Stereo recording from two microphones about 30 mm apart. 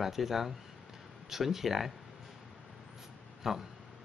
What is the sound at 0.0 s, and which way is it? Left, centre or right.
Speech, centre.